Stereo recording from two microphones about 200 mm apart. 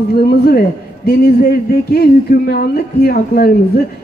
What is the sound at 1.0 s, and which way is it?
Speech, 50° left (ahead or behind).